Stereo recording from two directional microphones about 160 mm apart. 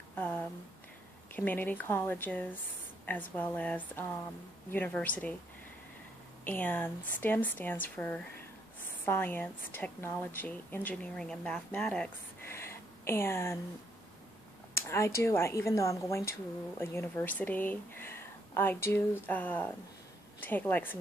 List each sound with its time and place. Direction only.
0.1 s a sound: 10° left (ahead or behind)
1.3 s a woman's voice: 10° left (ahead or behind)
6.4 s a woman's voice: 10° left (ahead or behind)
14.7 s a woman's voice: 15° left (ahead or behind)